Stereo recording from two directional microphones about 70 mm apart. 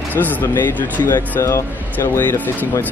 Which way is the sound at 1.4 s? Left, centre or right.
Left.